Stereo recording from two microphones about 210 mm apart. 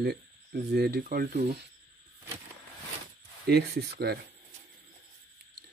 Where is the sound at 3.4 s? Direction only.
50° right (ahead or behind).